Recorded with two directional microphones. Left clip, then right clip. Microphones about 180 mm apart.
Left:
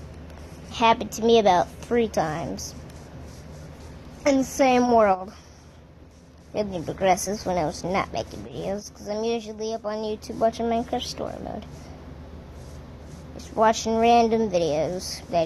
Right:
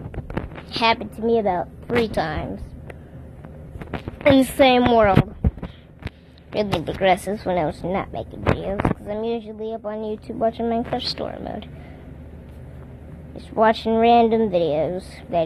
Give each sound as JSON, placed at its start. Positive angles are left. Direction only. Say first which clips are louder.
{"t": 0.7, "sound": "a sound", "louder": "even", "side_deg": 10}
{"t": 0.9, "sound": "a woman's voice", "louder": "left 2 dB", "side_deg": 15}
{"t": 2.1, "sound": "a woman's voice", "louder": "right 1 dB", "side_deg": 0}
{"t": 4.4, "sound": "a woman's voice", "louder": "right 3 dB", "side_deg": -10}
{"t": 6.5, "sound": "a woman's voice", "louder": "right 5 dB", "side_deg": 0}
{"t": 13.6, "sound": "a woman's voice", "louder": "right 3 dB", "side_deg": 0}